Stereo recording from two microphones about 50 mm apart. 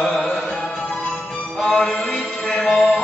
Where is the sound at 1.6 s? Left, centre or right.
Centre.